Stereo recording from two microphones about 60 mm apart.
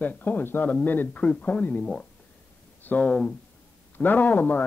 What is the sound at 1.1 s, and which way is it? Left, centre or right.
Speech, centre.